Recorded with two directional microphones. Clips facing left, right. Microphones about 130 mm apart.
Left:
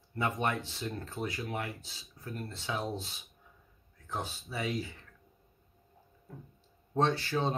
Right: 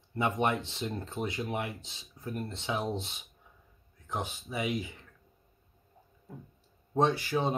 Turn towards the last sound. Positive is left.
turn(degrees=-15)  # may be behind; listen again after turning